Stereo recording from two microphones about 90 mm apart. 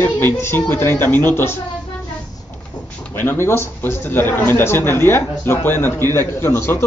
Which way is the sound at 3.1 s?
25° left (ahead or behind).